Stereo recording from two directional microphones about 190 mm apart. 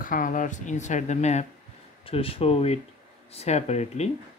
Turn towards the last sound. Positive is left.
turn(degrees=35)  # may be behind; listen again after turning